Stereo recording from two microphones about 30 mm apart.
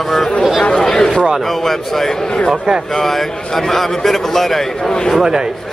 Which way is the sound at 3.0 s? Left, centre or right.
Centre.